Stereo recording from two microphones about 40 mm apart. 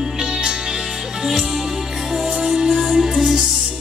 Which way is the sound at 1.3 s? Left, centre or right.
Centre.